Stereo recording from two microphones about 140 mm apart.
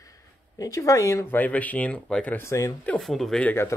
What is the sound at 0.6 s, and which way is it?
Speech, 25° left (ahead or behind).